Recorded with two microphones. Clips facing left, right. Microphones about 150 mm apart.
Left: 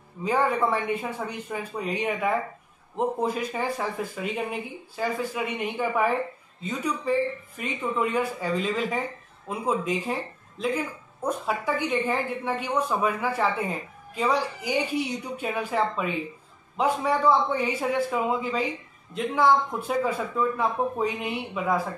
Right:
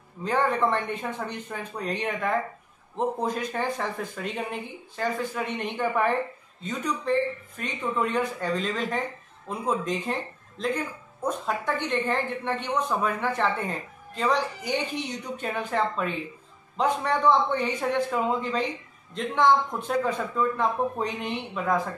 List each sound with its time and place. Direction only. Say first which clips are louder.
0.2 s a woman's voice: left 1 dB; 10° left (ahead or behind)